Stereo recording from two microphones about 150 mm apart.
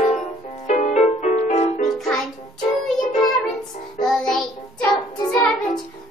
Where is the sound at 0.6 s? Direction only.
50° left (ahead or behind).